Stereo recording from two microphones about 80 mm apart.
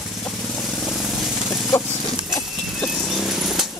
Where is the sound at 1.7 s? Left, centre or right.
Left.